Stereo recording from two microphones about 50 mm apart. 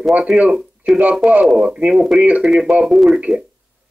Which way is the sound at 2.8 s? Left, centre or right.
Centre.